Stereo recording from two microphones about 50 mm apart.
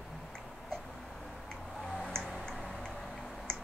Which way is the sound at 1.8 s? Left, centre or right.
Centre.